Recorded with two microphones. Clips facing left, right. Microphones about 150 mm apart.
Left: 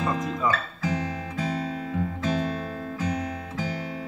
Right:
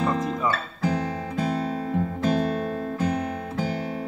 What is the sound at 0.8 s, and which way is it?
Guitar, 50° right (ahead or behind).